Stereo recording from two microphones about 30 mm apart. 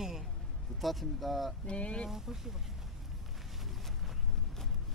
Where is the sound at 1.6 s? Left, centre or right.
Left.